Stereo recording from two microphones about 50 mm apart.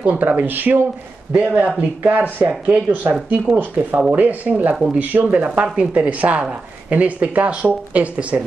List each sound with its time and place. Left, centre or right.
0.0 s speech: right